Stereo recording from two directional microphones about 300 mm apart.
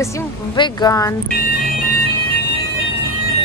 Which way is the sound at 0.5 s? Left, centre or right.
Centre.